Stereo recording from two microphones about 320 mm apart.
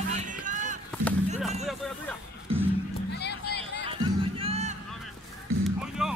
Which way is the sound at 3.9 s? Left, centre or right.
Centre.